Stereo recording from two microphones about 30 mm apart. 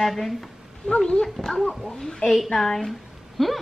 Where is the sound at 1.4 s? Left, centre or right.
Centre.